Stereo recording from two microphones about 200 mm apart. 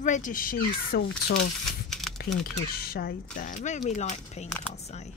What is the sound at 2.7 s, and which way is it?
Speech, 50° left (ahead or behind).